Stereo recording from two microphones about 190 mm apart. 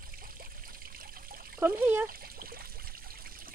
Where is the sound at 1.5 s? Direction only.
10° right (ahead or behind).